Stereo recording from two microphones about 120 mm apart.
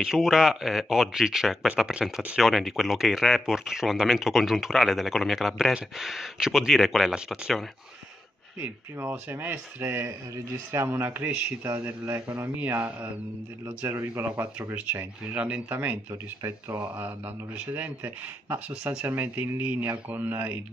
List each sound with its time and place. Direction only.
0.0 s speech: 5° right (ahead or behind)
8.5 s speech: 20° right (ahead or behind)